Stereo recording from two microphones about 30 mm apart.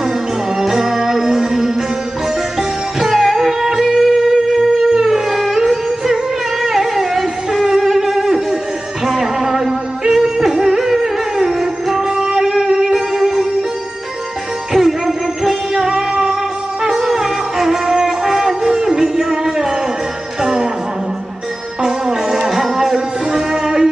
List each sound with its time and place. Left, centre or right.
0.6 s music: centre
3.0 s music: centre
4.9 s a sound: right
5.3 s music: centre
9.0 s yodeling: centre
14.7 s music: centre
17.8 s music: right
21.8 s music: centre